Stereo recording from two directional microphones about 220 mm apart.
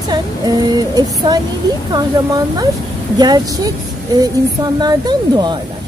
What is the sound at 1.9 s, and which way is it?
Speech, 20° right (ahead or behind).